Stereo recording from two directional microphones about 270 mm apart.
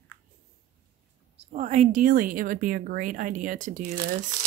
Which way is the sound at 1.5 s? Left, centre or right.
Right.